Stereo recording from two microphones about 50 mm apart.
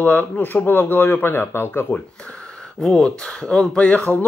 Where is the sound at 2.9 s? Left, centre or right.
Centre.